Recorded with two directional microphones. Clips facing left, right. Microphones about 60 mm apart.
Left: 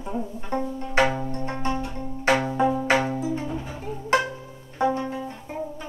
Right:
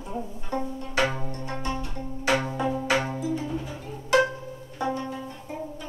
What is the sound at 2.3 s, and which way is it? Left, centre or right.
Music, left.